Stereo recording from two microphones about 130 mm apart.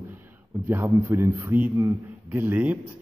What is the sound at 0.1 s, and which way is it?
A man's voice, 15° right (ahead or behind).